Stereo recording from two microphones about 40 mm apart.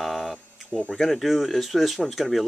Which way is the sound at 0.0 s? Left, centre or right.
Centre.